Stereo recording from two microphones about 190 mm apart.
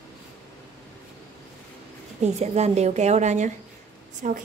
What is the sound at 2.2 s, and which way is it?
A woman's voice, 35° right (ahead or behind).